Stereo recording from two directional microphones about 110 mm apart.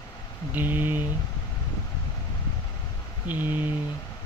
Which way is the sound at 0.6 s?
15° right (ahead or behind).